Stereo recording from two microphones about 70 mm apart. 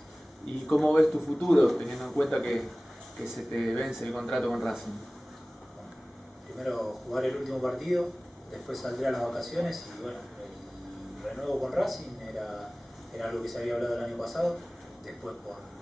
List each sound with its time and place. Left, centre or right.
0.7 s a man's voice: centre
6.6 s a man's voice: centre
11.2 s a man's voice: centre